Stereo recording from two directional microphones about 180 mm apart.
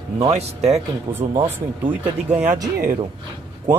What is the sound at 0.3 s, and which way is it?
Speech, 35° right (ahead or behind).